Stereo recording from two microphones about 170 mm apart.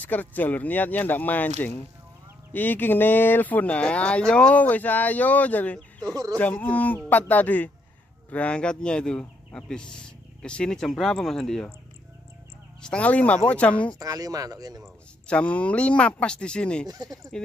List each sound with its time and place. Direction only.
0.0 s speech: 10° left (ahead or behind)
2.5 s speech: 10° left (ahead or behind)
12.8 s speech: 5° left (ahead or behind)
13.9 s speech: 20° right (ahead or behind)
14.8 s speech: 5° left (ahead or behind)
16.8 s speech: 20° right (ahead or behind)